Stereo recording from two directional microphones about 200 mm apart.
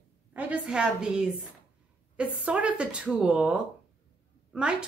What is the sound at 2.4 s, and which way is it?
Speech, 5° right (ahead or behind).